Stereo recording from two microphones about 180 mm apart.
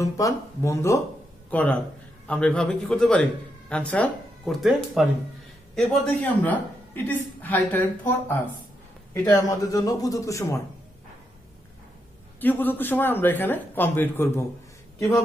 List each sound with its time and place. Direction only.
0.0 s a woman's voice: 15° left (ahead or behind)
12.4 s a woman's voice: 10° left (ahead or behind)